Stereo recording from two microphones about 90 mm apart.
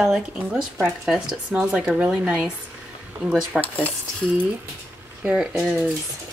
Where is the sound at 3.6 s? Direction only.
15° left (ahead or behind).